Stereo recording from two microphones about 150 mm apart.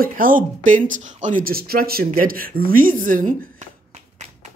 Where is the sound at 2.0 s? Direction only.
70° right (ahead or behind); by 4.5 s 50° right (ahead or behind).